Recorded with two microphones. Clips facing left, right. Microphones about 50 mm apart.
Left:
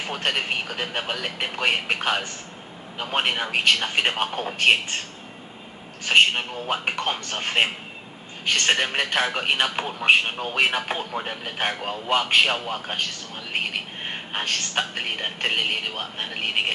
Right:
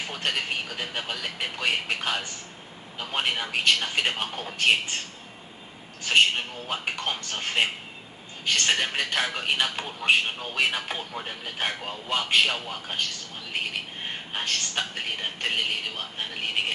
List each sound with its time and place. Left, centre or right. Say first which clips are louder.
0.0 s a man's voice: left 3 dB; left
6.0 s a man's voice: left 3 dB; left
14.0 s a man's voice: left 3 dB; left